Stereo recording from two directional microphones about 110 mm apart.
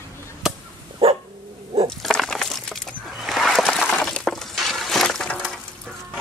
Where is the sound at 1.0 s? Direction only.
55° right (ahead or behind).